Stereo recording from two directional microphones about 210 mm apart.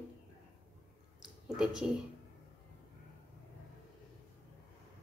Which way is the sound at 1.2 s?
Centre (ahead or behind).